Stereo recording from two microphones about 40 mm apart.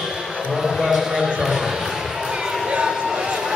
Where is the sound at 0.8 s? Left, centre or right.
Centre.